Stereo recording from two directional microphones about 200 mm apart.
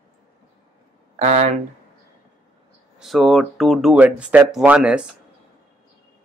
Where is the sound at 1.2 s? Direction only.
35° right (ahead or behind).